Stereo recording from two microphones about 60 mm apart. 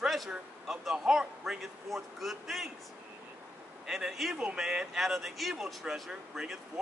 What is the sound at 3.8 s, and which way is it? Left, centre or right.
Speech, centre.